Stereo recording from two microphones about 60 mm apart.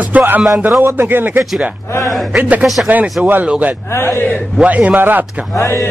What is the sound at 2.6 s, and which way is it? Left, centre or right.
Speech, centre.